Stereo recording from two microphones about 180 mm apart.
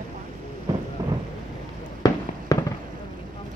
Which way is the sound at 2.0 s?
20° left (ahead or behind).